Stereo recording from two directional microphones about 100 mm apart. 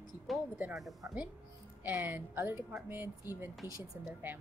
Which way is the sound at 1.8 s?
20° right (ahead or behind).